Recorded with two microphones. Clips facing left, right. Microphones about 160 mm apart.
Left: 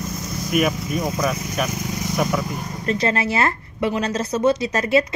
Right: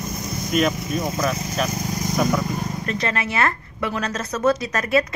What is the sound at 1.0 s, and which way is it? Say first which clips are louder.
Speech: left 1 dB; centre (ahead or behind).